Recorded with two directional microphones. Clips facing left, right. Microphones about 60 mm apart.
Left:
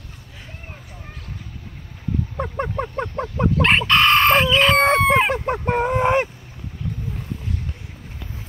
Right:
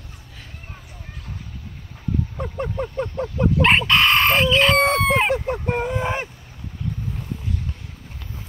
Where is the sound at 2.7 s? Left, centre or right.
Left.